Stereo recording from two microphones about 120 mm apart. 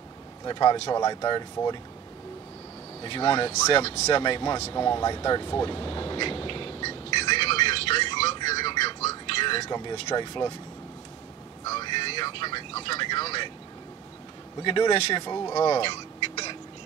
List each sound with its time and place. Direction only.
0.5 s speech: 35° left (ahead or behind)
3.0 s speech: 45° left (ahead or behind)
3.5 s speech: 30° left (ahead or behind)
4.6 s speech: 25° left (ahead or behind)
4.8 s speech: 35° left (ahead or behind)
7.3 s a sound: 50° left (ahead or behind)
10.0 s speech: 40° left (ahead or behind)
11.7 s vehicle: 45° left (ahead or behind)
14.6 s speech: 45° left (ahead or behind)
15.1 s speech: 35° left (ahead or behind)
15.8 s a sound: 50° left (ahead or behind)